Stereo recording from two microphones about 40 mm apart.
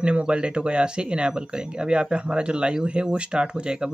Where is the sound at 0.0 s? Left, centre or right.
Right.